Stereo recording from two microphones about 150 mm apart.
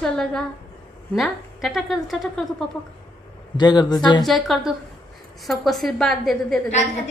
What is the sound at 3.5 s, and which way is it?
Speech, 30° left (ahead or behind).